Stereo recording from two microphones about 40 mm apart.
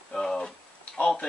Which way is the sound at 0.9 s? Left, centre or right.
Left.